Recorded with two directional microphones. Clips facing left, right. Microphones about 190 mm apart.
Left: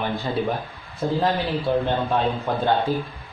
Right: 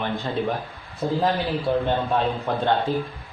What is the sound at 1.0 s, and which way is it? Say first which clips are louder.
Speech: even; centre (ahead or behind).